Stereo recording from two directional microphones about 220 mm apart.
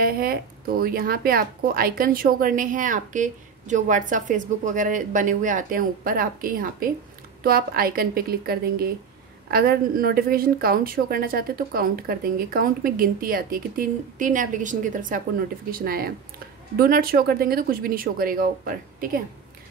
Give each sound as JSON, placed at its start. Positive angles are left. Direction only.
{"t": 0.0, "sound": "a woman's voice", "side_deg": -40}